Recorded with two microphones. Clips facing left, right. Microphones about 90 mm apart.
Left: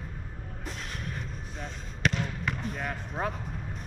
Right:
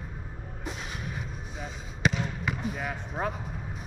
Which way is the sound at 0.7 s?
5° right (ahead or behind).